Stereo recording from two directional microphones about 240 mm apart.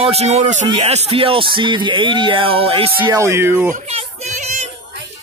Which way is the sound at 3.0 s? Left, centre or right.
Centre.